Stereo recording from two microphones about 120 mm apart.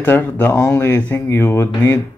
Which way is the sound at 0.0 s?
15° left (ahead or behind).